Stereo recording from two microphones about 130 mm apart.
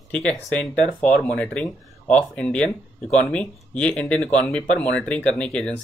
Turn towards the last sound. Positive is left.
turn(degrees=10)  # may be behind; listen again after turning